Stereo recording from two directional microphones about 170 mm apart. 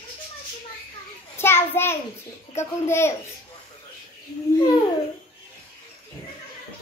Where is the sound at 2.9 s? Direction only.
15° left (ahead or behind).